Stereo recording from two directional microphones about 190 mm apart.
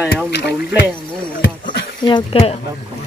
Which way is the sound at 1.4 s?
50° left (ahead or behind).